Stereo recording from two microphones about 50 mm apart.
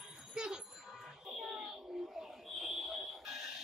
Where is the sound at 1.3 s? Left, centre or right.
Centre.